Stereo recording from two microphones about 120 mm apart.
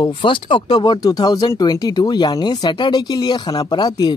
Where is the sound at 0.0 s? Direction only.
45° left (ahead or behind).